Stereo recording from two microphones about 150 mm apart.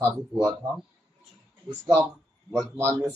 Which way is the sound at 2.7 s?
15° right (ahead or behind).